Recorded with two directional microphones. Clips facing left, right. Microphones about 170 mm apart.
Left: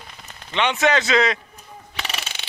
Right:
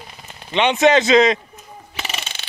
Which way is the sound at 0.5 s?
20° right (ahead or behind).